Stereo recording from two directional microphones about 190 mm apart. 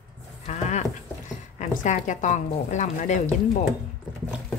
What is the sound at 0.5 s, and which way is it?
Goat, 35° left (ahead or behind).